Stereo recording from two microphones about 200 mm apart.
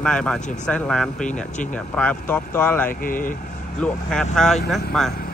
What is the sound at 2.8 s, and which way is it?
Speech, 45° left (ahead or behind).